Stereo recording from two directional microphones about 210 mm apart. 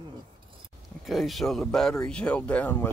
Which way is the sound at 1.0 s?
Centre (ahead or behind).